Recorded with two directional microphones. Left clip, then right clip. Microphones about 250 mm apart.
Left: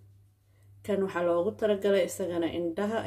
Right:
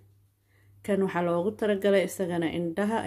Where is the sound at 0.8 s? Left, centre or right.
Right.